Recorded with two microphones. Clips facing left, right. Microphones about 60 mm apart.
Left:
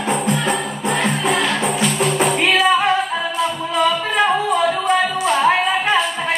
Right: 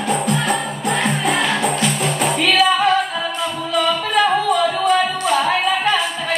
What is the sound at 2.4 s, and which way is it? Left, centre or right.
Music, left.